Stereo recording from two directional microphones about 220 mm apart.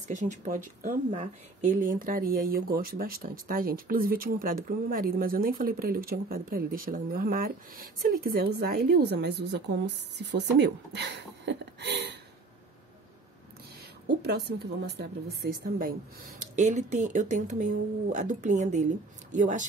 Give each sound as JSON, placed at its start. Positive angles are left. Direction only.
{"t": 0.1, "sound": "speech", "side_deg": -35}
{"t": 14.0, "sound": "speech", "side_deg": -50}